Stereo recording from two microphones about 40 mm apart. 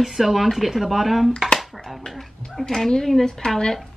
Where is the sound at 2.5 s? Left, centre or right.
Centre.